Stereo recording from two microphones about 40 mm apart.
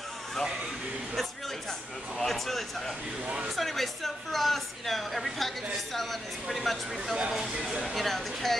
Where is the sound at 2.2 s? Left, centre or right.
Centre.